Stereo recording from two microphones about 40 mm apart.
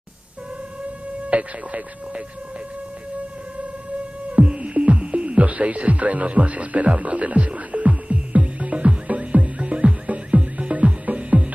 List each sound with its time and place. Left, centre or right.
1.3 s speech: right
4.3 s music: right